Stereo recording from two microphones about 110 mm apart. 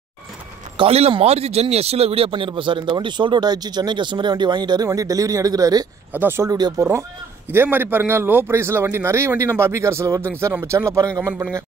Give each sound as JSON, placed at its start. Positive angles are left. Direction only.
{"t": 0.7, "sound": "speech", "side_deg": -65}
{"t": 1.2, "sound": "a man's voice", "side_deg": -75}
{"t": 4.8, "sound": "speech", "side_deg": -30}
{"t": 6.1, "sound": "a man's voice", "side_deg": -20}
{"t": 6.4, "sound": "speech", "side_deg": -35}
{"t": 6.8, "sound": "a man's voice", "side_deg": -25}